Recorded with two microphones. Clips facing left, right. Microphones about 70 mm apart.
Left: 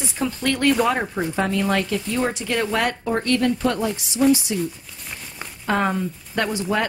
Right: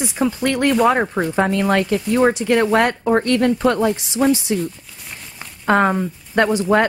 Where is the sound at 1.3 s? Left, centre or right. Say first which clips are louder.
Right 4 dB; right.